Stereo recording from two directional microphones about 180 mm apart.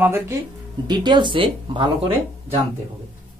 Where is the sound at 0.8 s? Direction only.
25° right (ahead or behind).